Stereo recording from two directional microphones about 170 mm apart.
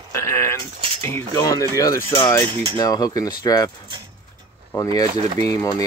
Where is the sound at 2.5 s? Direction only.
25° right (ahead or behind).